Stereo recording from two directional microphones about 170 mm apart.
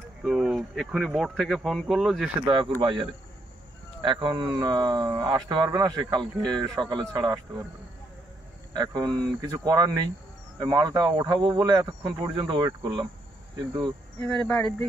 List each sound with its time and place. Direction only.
0.2 s speech: 5° right (ahead or behind)
2.4 s speech: 25° right (ahead or behind)
8.7 s speech: 25° right (ahead or behind)
14.4 s speech: 5° left (ahead or behind)